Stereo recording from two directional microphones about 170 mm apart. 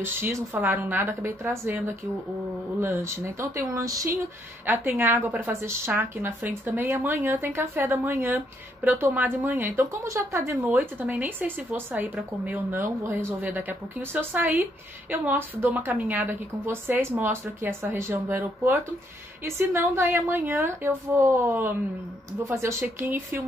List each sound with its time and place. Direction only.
0.0 s speech: 15° right (ahead or behind)